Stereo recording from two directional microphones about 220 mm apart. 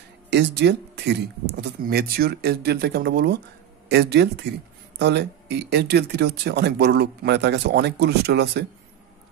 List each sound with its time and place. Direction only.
0.3 s speech: 50° right (ahead or behind)